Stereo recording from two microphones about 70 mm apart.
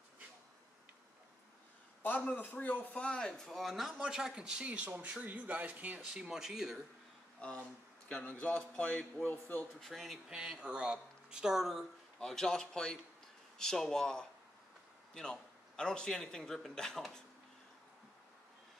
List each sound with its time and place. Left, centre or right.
2.0 s a man's voice: left
3.4 s speech: centre; by 6.0 s right
6.1 s speech: centre
7.3 s a man's voice: centre
9.8 s speech: centre
10.3 s speech: centre
12.2 s a man's voice: centre